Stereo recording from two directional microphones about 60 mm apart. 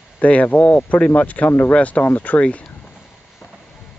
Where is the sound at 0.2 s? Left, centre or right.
Left.